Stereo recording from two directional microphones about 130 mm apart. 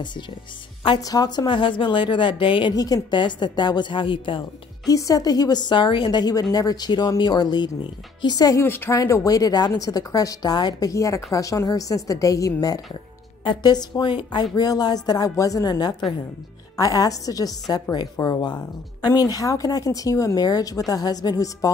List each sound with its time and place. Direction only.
0.8 s a woman's voice: 30° left (ahead or behind)
4.8 s a woman's voice: 25° left (ahead or behind)
8.6 s speech: 15° left (ahead or behind)
8.9 s a woman's voice: 25° left (ahead or behind)